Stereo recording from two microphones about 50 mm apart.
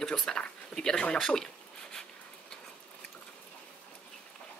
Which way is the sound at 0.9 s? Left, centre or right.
Left.